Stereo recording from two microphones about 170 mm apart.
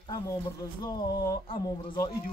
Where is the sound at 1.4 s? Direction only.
35° left (ahead or behind).